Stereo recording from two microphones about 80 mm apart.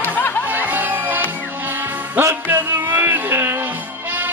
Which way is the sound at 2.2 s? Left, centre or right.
Right.